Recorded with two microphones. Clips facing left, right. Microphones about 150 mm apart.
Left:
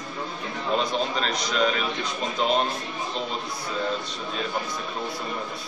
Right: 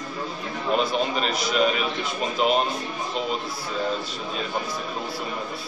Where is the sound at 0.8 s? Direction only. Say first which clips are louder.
Right 2 dB; 5° right (ahead or behind).